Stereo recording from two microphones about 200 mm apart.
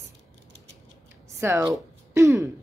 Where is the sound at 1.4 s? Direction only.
15° right (ahead or behind).